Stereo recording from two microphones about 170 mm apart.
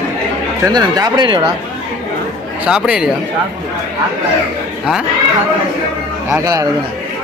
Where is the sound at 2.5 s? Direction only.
5° right (ahead or behind).